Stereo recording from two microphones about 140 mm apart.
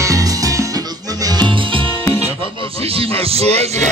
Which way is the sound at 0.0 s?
25° right (ahead or behind).